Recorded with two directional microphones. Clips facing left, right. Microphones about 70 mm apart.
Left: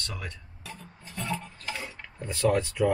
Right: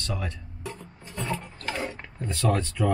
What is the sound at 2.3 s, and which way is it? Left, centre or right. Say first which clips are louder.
Speech: left 1 dB; centre.